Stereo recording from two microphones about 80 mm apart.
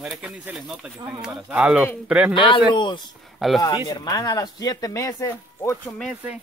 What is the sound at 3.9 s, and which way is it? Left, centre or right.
Speech, left.